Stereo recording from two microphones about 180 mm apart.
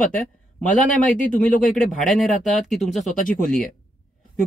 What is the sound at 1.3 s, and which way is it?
Speech, 45° left (ahead or behind).